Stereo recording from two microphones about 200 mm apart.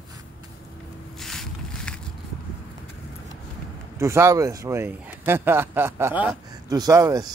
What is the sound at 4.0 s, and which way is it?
A man's voice, 15° right (ahead or behind).